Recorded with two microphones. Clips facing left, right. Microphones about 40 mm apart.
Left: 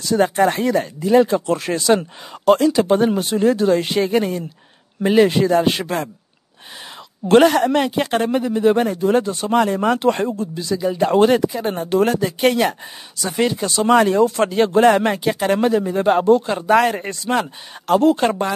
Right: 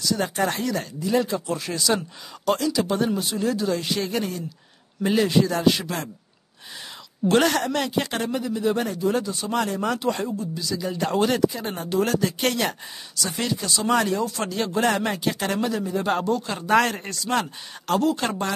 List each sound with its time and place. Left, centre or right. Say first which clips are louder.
0.0 s speech: left 8 dB; left
7.6 s speech: left 7 dB; left
10.8 s speech: left 9 dB; centre
13.7 s speech: left 7 dB; left
15.5 s speech: left 8 dB; left
16.4 s speech: left 8 dB; centre
16.9 s speech: left 6 dB; left
17.3 s speech: left 4 dB; centre
18.0 s speech: left 8 dB; left